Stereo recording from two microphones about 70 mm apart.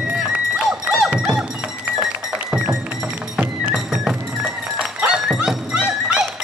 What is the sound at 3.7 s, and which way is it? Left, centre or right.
Music, centre.